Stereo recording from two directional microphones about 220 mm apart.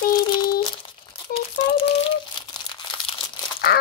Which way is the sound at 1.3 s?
25° left (ahead or behind).